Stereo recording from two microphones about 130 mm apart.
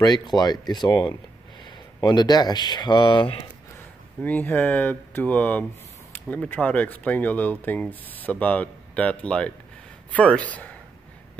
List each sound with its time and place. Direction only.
0.0 s speech: 30° left (ahead or behind)
4.2 s speech: 15° left (ahead or behind)